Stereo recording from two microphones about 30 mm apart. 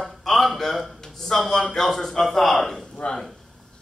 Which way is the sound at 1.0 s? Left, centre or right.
Centre.